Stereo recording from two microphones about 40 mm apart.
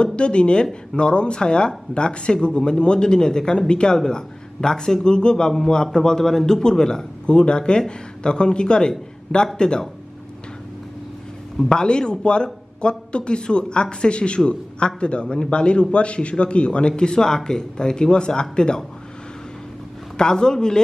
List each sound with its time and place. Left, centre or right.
0.0 s speech: left
11.7 s speech: centre
20.2 s a man's voice: centre